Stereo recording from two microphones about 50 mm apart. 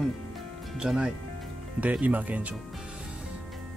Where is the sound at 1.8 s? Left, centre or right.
Right.